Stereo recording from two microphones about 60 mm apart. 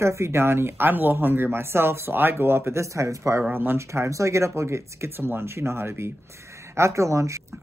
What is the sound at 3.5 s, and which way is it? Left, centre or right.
Speech, right.